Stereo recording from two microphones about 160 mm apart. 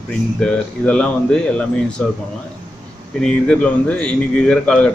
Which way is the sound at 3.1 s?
5° left (ahead or behind).